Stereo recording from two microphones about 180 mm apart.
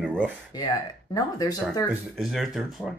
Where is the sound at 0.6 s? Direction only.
20° left (ahead or behind).